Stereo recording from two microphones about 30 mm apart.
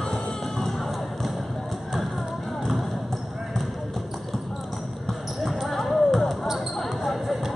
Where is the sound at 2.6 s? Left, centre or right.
Centre.